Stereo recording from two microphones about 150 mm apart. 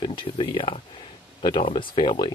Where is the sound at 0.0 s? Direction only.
35° left (ahead or behind).